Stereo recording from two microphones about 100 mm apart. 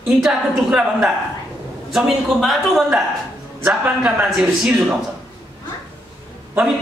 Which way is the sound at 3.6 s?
15° right (ahead or behind).